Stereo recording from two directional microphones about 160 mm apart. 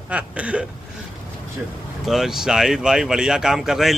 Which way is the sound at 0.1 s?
10° right (ahead or behind).